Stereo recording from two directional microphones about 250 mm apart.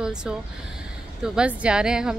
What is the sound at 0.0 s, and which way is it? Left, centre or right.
Speech, centre.